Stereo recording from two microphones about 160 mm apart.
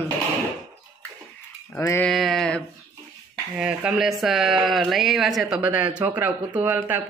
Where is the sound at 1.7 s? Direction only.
15° left (ahead or behind).